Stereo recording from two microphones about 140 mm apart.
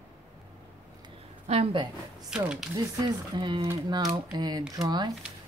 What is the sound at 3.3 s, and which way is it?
Speech, 35° right (ahead or behind).